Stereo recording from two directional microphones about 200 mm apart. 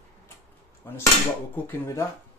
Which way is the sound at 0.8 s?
15° left (ahead or behind).